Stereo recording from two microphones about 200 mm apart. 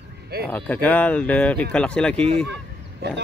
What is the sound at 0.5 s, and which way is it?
Speech, 10° left (ahead or behind).